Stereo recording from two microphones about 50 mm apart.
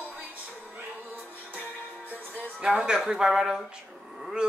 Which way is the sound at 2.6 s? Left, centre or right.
Centre.